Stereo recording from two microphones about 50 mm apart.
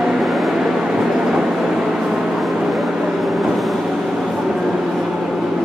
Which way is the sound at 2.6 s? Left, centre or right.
Centre.